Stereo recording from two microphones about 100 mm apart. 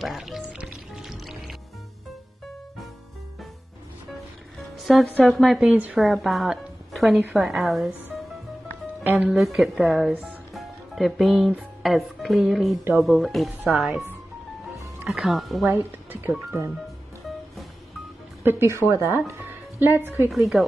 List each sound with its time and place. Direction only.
0.0 s music: centre (ahead or behind)
4.8 s speech: centre (ahead or behind)
9.0 s speech: 15° right (ahead or behind)
9.4 s speech: centre (ahead or behind)
15.0 s speech: centre (ahead or behind)
15.7 s speech: 20° right (ahead or behind)
18.4 s a woman's voice: 20° right (ahead or behind)
18.8 s speech: 30° left (ahead or behind)
19.1 s speech: 25° right (ahead or behind)
20.2 s speech: centre (ahead or behind)